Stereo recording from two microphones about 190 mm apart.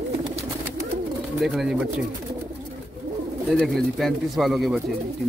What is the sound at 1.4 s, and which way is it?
Speech, centre (ahead or behind).